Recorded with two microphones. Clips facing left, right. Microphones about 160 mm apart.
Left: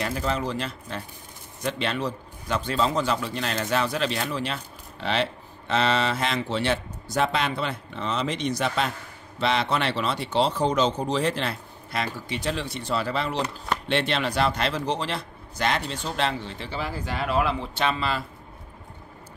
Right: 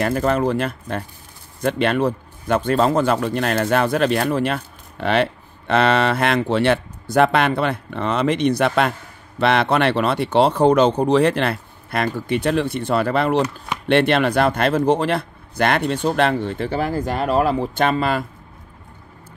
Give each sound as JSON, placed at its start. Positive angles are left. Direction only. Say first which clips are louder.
{"t": 0.0, "sound": "a man's voice", "louder": "right 9 dB", "side_deg": -55}